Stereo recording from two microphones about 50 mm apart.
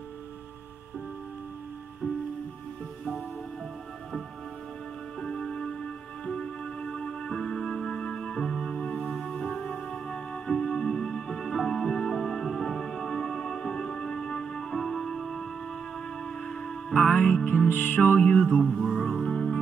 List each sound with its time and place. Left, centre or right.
5.2 s music: centre
17.6 s music: left
18.0 s music: left
18.7 s music: centre
19.3 s music: centre